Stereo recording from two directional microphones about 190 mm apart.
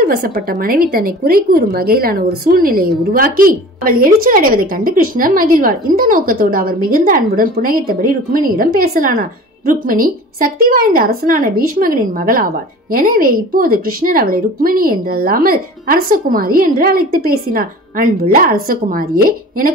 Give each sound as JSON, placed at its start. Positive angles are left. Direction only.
{"t": 0.0, "sound": "a woman's voice", "side_deg": -50}